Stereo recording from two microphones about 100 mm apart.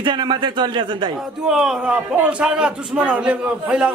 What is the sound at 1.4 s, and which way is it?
A man's voice, 5° right (ahead or behind).